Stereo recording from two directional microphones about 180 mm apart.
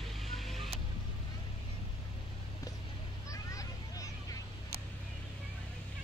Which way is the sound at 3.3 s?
20° left (ahead or behind).